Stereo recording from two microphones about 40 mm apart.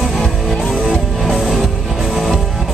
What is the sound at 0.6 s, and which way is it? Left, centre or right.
Music, centre.